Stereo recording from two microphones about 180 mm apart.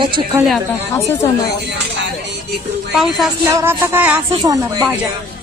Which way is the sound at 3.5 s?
15° right (ahead or behind).